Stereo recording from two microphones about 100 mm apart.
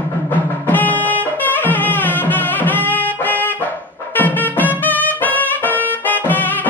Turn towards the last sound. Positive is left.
turn(degrees=15)  # may be behind; listen again after turning